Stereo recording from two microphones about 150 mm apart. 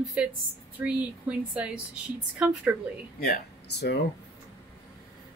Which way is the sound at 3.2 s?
80° left.